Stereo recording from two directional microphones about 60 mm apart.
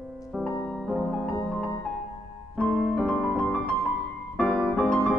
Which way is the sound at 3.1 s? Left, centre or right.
Centre.